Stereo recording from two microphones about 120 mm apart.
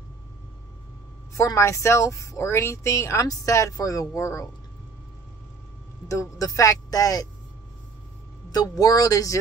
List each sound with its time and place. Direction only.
1.3 s speech: 25° left (ahead or behind)
6.0 s speech: 30° left (ahead or behind)
8.5 s speech: 30° left (ahead or behind)